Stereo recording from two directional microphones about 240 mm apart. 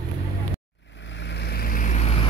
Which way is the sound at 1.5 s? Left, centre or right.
Left.